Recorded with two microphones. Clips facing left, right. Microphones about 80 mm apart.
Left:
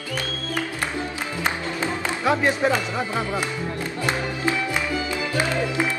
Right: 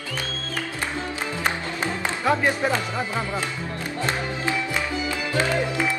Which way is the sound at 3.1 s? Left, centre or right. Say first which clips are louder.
Left 2 dB; centre.